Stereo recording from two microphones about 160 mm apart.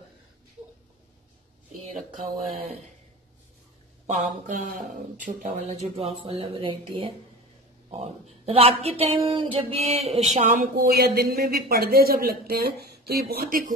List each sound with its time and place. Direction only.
2.1 s speech: 60° right (ahead or behind)
4.1 s speech: 50° right (ahead or behind)
6.2 s a sound: 35° right (ahead or behind)
11.0 s speech: 70° right (ahead or behind)